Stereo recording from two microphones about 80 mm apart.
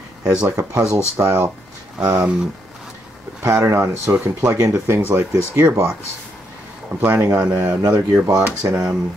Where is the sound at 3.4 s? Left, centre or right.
Right.